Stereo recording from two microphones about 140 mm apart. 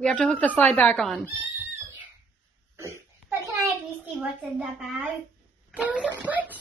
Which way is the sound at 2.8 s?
20° right (ahead or behind).